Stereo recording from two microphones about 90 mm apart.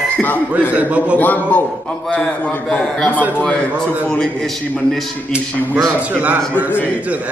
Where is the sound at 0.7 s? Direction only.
15° right (ahead or behind).